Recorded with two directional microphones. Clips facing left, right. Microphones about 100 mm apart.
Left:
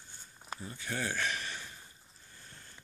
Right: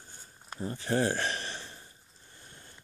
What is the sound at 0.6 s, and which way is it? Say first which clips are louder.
Speech: right 10 dB; 35° right (ahead or behind).